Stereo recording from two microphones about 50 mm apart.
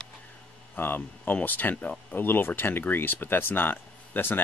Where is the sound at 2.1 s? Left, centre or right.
Left.